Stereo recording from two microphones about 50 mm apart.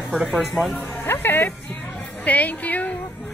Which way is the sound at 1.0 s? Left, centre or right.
Left.